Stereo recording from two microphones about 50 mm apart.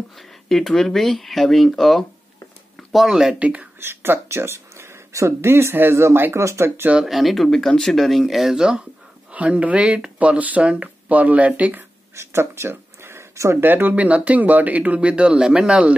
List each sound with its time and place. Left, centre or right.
0.5 s speech: centre
3.3 s speech: right
3.8 s speech: right
5.5 s speech: right
7.1 s speech: centre
7.4 s speech: centre
9.3 s speech: right
12.2 s a sound: right
13.6 s speech: right; by 15.9 s centre